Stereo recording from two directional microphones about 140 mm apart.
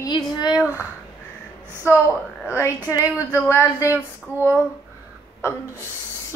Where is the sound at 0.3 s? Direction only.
30° left (ahead or behind).